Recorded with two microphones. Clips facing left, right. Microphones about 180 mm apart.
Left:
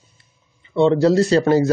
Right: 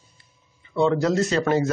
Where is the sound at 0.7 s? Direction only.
30° left (ahead or behind).